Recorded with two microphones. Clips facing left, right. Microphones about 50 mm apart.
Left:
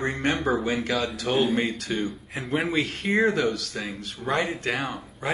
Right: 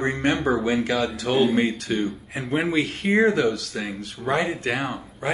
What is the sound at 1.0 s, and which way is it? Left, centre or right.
Speech, centre.